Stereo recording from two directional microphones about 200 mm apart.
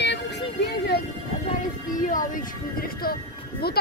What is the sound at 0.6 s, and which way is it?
Music, 55° left (ahead or behind).